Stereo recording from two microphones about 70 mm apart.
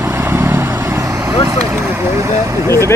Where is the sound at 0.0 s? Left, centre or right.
Right.